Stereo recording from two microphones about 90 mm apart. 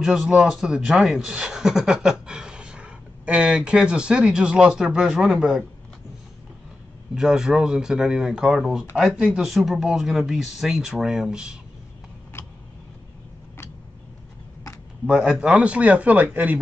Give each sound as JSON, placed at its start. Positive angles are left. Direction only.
{"t": 0.0, "sound": "a man's voice", "side_deg": -5}
{"t": 7.2, "sound": "speech", "side_deg": -5}
{"t": 12.3, "sound": "a sound", "side_deg": 30}
{"t": 15.0, "sound": "a man's voice", "side_deg": -10}